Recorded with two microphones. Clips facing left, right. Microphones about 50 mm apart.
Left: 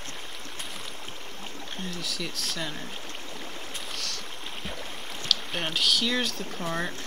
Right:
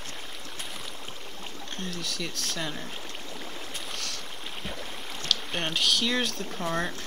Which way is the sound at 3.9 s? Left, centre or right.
Centre.